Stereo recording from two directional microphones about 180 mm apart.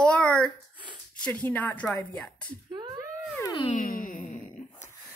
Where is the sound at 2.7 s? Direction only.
25° right (ahead or behind).